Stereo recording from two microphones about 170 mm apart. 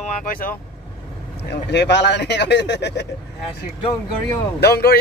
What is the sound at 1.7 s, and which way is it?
Speech, 90° left.